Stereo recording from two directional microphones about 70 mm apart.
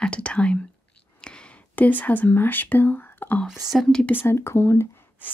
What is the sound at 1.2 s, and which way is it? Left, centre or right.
Speech, centre.